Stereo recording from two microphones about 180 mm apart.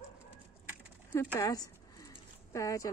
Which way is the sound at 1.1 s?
15° left (ahead or behind).